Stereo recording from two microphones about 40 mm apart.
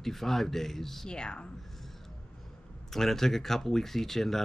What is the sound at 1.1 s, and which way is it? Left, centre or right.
Speech, left.